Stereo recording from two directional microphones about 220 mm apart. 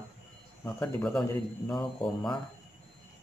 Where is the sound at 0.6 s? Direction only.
5° left (ahead or behind).